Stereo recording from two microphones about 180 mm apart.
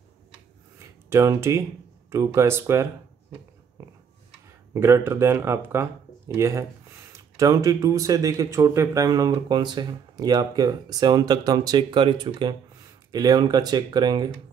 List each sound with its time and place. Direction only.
1.1 s speech: 15° right (ahead or behind)
4.7 s speech: 15° right (ahead or behind)